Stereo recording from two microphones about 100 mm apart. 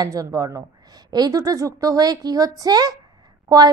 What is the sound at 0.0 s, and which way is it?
A woman's voice, 35° right (ahead or behind).